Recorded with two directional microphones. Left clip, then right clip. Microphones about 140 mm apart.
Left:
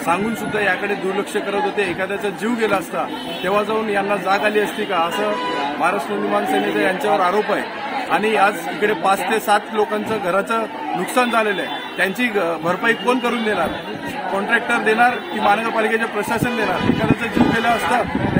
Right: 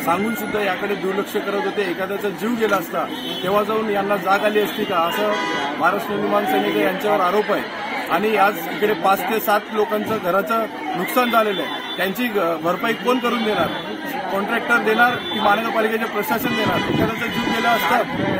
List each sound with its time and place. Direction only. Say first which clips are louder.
0.0 s a man's voice: left 1 dB; centre (ahead or behind)